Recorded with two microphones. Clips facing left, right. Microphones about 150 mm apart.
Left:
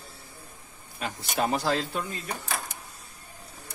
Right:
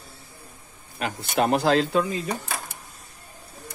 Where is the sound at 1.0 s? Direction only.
70° right (ahead or behind); by 2.3 s 90° right.